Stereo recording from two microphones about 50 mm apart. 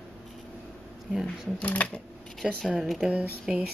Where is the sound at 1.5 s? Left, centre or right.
Left.